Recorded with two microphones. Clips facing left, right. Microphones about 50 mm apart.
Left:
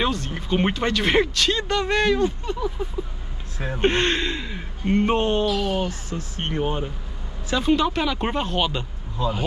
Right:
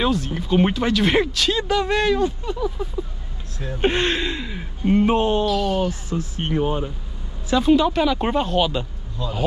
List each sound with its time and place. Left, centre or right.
0.0 s speech: centre
3.5 s speech: left
3.8 s speech: centre